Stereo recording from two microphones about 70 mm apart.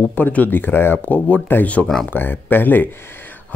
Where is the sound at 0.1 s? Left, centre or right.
Left.